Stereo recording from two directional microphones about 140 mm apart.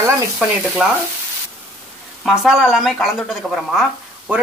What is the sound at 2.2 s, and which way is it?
Speech, centre (ahead or behind).